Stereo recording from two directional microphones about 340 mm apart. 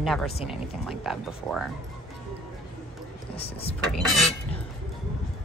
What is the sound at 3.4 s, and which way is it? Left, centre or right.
Speech, centre.